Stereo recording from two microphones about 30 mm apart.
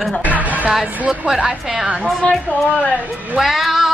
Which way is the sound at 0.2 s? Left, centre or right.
Right.